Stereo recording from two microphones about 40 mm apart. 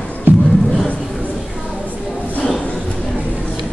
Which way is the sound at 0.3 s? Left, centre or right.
Right.